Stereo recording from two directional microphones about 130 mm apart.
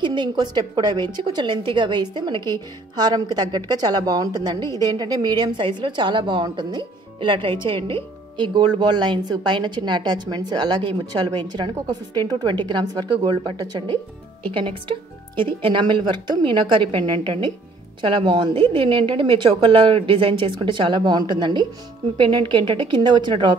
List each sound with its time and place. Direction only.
0.0 s a woman's voice: 35° right (ahead or behind)